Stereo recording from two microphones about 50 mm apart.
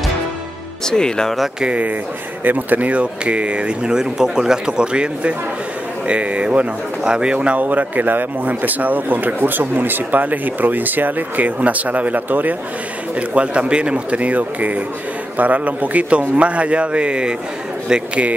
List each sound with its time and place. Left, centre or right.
0.8 s speech: centre
1.6 s speech: right
7.4 s speech: right
13.1 s speech: right